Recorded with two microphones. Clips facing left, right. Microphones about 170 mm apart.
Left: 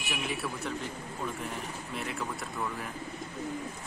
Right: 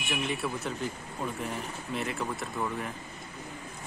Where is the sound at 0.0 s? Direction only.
Centre (ahead or behind).